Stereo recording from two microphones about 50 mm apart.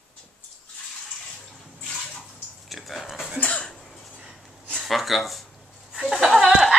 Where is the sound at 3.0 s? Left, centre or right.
Centre.